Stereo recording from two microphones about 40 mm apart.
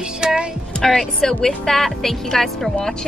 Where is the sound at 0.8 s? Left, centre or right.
Centre.